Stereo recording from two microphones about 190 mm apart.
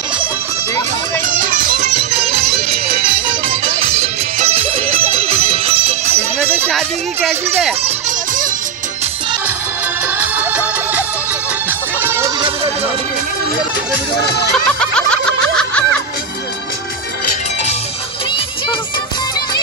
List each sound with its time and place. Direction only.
1.2 s music: 45° right (ahead or behind)
3.4 s music: 30° right (ahead or behind)
6.7 s a sound: centre (ahead or behind)
10.0 s music: 10° right (ahead or behind)
12.0 s music: 10° right (ahead or behind)
14.8 s snicker: 5° left (ahead or behind)